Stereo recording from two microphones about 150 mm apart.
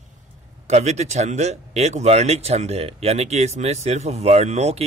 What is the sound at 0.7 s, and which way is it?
Speech, 50° right (ahead or behind).